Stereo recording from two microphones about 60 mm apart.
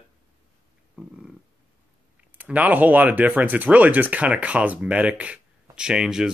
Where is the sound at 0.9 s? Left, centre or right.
Centre.